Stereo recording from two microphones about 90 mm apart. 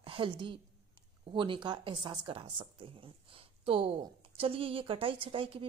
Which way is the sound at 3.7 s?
90° right.